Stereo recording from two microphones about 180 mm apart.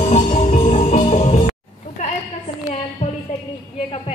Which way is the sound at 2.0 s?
45° left (ahead or behind).